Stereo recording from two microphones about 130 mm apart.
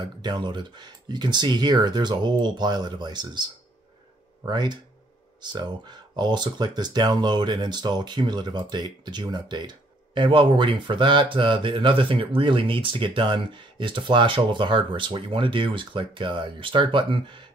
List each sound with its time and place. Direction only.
0.0 s speech: 35° right (ahead or behind)